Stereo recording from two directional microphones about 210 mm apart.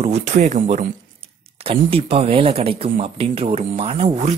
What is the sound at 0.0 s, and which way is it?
Speech, 30° right (ahead or behind).